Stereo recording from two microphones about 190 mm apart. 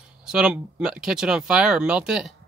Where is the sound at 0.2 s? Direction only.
5° right (ahead or behind).